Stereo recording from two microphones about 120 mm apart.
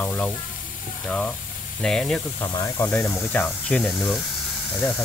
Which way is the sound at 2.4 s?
25° left (ahead or behind).